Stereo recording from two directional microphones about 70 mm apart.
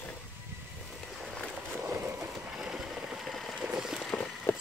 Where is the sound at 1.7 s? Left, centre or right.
Right.